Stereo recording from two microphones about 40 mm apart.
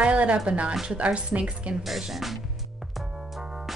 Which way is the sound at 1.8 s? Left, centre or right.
Centre.